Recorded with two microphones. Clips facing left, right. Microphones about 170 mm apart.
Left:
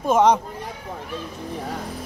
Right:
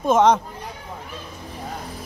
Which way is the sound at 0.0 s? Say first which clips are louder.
Right 1 dB; 10° left (ahead or behind).